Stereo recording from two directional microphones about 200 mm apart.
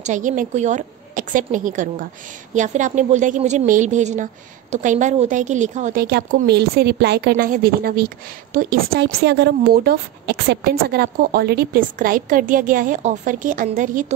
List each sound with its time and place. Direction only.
0.0 s a woman's voice: 40° right (ahead or behind)
6.0 s a woman's voice: 55° right (ahead or behind); by 14.1 s 35° right (ahead or behind)